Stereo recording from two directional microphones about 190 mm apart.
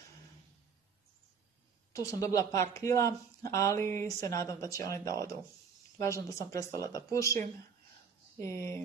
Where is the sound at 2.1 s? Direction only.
15° left (ahead or behind).